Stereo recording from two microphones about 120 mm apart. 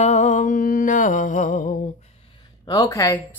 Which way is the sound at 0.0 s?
80° left.